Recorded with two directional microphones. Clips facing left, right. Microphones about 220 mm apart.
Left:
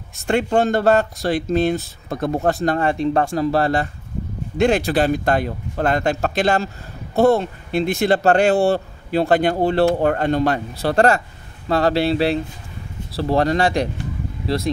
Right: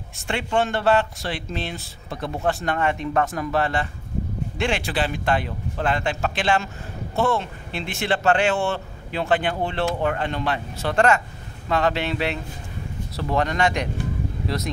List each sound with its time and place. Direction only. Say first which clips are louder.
0.3 s speech: left 6 dB; 40° left (ahead or behind)